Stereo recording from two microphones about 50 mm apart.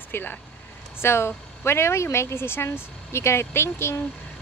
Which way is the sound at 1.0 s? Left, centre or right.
Left.